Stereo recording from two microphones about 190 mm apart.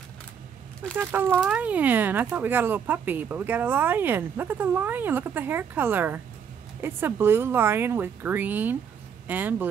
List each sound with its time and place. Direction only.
0.9 s speech: 10° right (ahead or behind)